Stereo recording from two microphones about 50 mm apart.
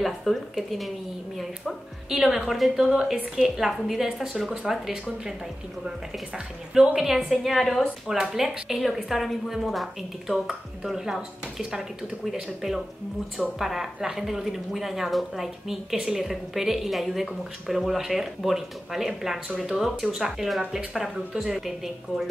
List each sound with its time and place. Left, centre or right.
0.0 s a woman's voice: centre
2.7 s a woman's voice: centre
6.3 s speech: centre
7.2 s a woman's voice: centre
13.6 s a woman's voice: centre
21.5 s a woman's voice: centre